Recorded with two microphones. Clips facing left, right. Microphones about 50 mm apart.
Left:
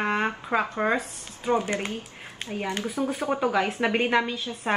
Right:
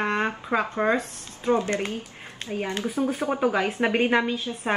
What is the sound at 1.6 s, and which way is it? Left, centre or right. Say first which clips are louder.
Speech: right 2 dB; centre.